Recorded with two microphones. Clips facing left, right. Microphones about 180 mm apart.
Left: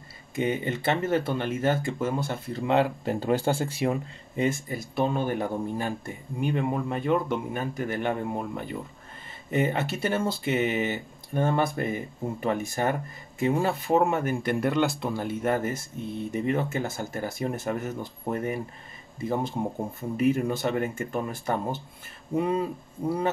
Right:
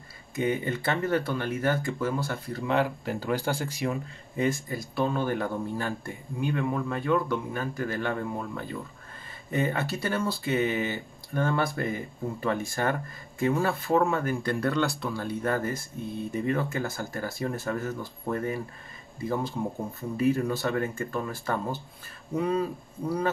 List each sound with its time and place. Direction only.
0.4 s speech: 20° left (ahead or behind)